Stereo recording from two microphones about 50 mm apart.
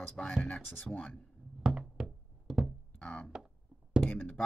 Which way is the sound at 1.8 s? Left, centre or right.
Centre.